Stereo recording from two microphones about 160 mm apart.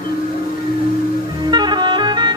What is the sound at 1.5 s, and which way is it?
Clarinet, 25° right (ahead or behind).